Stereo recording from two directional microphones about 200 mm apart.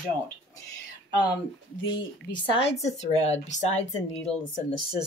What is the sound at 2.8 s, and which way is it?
Speech, 35° left (ahead or behind).